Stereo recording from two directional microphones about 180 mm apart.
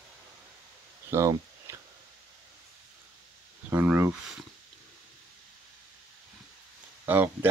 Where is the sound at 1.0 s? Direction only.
15° right (ahead or behind).